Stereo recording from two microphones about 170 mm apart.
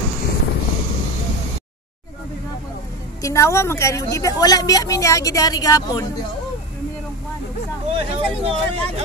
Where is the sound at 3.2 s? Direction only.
15° left (ahead or behind).